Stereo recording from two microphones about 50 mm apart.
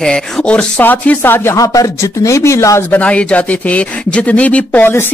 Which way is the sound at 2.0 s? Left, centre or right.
Left.